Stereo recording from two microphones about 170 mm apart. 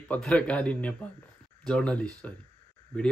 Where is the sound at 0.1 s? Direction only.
5° left (ahead or behind).